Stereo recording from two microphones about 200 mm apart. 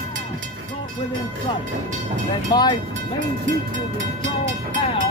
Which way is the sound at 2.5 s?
20° left (ahead or behind).